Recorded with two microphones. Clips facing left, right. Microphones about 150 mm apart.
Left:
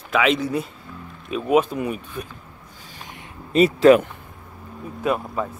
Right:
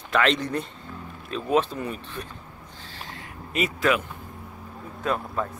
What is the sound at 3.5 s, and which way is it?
Speech, 30° left (ahead or behind).